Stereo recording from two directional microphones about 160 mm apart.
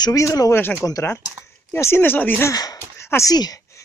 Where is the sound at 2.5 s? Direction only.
25° left (ahead or behind).